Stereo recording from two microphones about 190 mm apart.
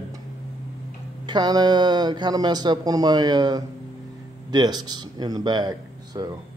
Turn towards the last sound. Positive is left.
turn(degrees=-20)  # may be behind; listen again after turning